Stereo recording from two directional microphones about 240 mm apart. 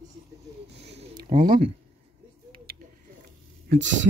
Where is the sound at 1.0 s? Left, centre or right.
Right.